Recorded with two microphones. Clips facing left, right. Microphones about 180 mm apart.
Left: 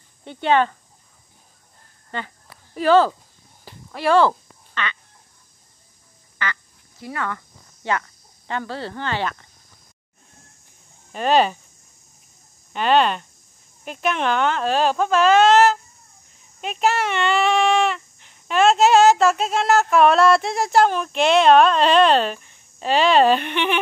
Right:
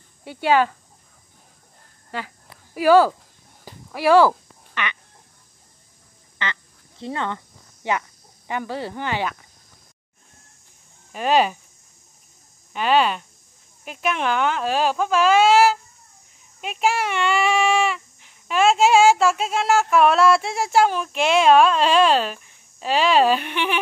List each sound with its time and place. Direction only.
0.2 s speech: 5° right (ahead or behind)
2.0 s a sound: 5° right (ahead or behind)
6.3 s quack: 20° right (ahead or behind)
8.5 s speech: 15° right (ahead or behind)
11.1 s speech: 5° right (ahead or behind)
12.7 s speech: 5° right (ahead or behind)